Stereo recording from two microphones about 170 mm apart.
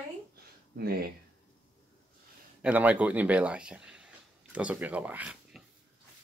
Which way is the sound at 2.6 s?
10° right (ahead or behind).